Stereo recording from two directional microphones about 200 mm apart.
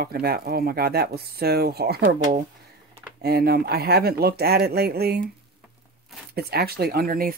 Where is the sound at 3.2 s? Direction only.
50° right (ahead or behind).